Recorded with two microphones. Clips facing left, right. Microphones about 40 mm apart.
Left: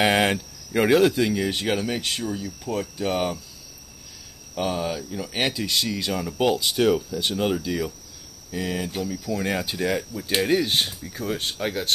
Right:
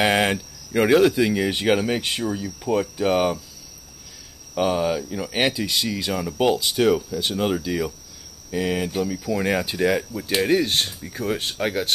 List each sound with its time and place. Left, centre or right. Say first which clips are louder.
0.0 s speech: right 1 dB; centre
1.3 s speech: right 4 dB; centre
4.6 s speech: right 5 dB; centre
5.5 s speech: right 1 dB; centre
8.5 s speech: right 4 dB; right
9.2 s speech: right 2 dB; centre
10.4 s speech: right 2 dB; centre
11.0 s speech: right 3 dB; centre